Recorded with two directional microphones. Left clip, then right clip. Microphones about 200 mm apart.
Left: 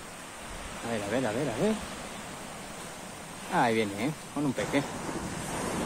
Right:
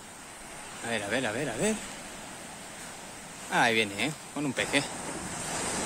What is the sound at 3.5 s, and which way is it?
Speech, 20° right (ahead or behind).